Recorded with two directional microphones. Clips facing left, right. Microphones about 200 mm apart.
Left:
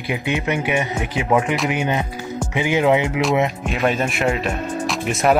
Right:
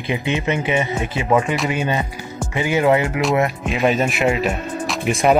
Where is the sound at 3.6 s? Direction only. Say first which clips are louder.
Right 2 dB; centre (ahead or behind).